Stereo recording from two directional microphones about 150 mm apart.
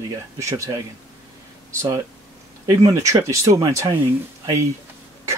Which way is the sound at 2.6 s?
20° right (ahead or behind).